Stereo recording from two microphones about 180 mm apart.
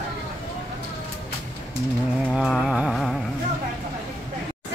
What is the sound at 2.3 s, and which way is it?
Speech, 5° right (ahead or behind).